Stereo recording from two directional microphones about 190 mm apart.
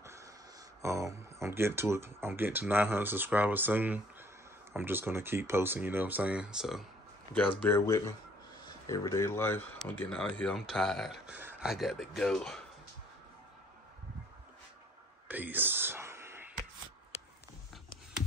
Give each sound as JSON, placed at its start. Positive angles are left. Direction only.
{"t": 0.0, "sound": "a sound", "side_deg": -15}
{"t": 0.8, "sound": "speech", "side_deg": -15}
{"t": 7.3, "sound": "speech", "side_deg": 10}
{"t": 15.2, "sound": "whispering", "side_deg": -10}